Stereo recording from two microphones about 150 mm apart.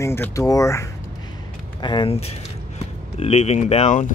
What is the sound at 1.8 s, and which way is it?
Speech, 30° left (ahead or behind).